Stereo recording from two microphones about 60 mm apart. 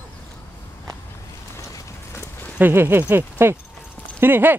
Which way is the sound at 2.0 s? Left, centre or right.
Left.